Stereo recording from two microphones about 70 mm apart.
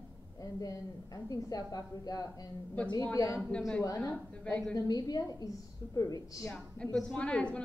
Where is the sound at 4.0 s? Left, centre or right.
Left.